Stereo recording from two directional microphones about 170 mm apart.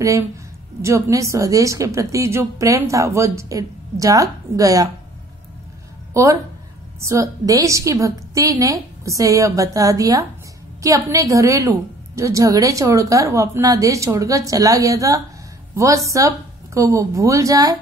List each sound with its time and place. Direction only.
0.8 s a woman's voice: 20° right (ahead or behind)
6.2 s a woman's voice: 20° right (ahead or behind)